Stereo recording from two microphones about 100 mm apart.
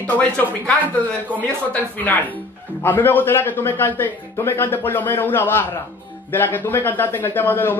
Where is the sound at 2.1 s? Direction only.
15° left (ahead or behind).